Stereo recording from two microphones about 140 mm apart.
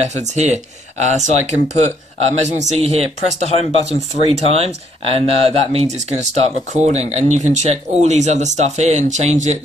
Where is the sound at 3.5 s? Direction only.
50° left (ahead or behind).